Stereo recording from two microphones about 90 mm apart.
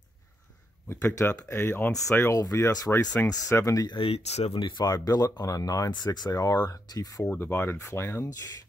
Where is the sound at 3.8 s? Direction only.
80° left; by 7.3 s 40° left (ahead or behind).